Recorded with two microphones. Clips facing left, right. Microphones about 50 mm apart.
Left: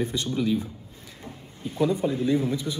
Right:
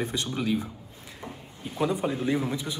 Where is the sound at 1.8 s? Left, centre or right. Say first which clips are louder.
Left 3 dB; right.